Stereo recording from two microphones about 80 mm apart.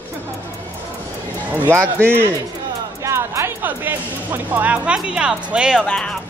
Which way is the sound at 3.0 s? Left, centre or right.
Right.